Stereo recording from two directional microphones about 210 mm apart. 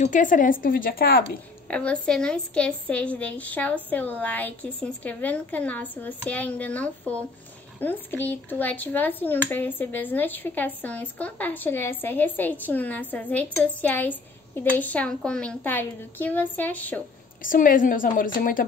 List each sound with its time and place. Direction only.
0.0 s speech: 40° left (ahead or behind)
1.7 s speech: 5° left (ahead or behind)
17.4 s speech: 40° left (ahead or behind)